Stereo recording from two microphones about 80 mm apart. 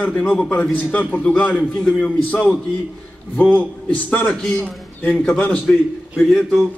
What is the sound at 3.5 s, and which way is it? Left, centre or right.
Speech, left.